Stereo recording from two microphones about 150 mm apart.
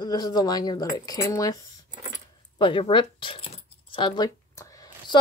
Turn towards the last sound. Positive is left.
turn(degrees=25)  # may be behind; listen again after turning